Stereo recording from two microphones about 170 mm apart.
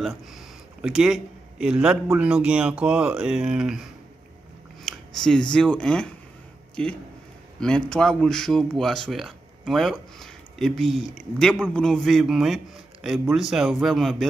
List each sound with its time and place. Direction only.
0.8 s a man's voice: 5° right (ahead or behind)
4.8 s speech: 5° left (ahead or behind)
6.7 s a sound: 5° left (ahead or behind)
7.6 s speech: 5° left (ahead or behind)